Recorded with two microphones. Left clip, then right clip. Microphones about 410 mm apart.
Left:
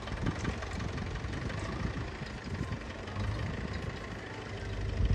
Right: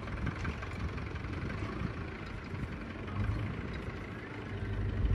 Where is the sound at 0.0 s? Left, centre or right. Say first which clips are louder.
Left 3 dB; left.